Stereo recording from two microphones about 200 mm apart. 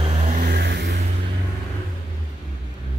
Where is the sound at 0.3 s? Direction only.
45° right (ahead or behind).